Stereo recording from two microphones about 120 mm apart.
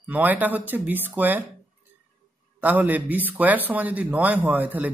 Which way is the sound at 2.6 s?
15° right (ahead or behind).